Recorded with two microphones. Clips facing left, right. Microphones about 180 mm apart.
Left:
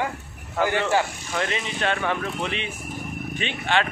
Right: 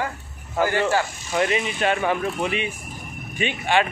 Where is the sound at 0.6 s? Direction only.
10° right (ahead or behind).